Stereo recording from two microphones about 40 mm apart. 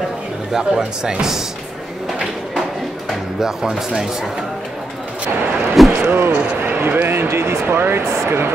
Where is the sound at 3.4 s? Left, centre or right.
Centre.